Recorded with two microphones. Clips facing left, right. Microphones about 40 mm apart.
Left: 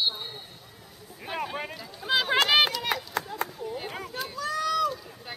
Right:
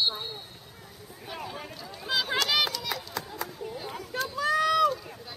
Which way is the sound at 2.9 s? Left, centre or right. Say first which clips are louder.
Left 5 dB; left.